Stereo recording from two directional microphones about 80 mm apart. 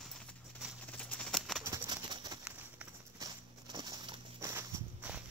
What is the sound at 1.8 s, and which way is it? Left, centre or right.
Horse, right.